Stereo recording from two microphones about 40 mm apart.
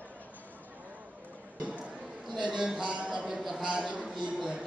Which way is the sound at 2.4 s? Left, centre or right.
Centre.